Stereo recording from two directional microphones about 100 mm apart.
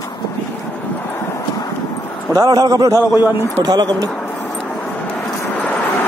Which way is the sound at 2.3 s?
40° right (ahead or behind).